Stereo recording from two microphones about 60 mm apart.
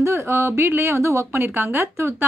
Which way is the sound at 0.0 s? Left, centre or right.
Right.